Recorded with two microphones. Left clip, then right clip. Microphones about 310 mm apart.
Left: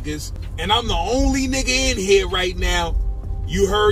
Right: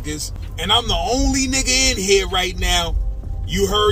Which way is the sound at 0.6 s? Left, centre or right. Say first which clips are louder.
Right 2 dB; centre.